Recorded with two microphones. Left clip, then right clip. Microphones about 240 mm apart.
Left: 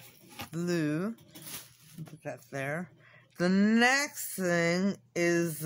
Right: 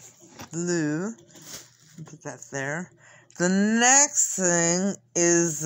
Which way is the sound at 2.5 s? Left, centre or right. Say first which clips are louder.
Right 6 dB; centre.